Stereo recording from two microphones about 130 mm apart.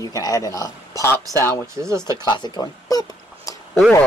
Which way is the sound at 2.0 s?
35° left (ahead or behind).